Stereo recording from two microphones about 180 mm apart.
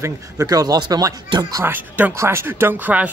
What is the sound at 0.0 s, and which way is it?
Speech, 20° right (ahead or behind).